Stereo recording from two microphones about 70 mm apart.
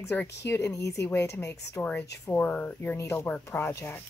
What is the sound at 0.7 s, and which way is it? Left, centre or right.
A woman's voice, left.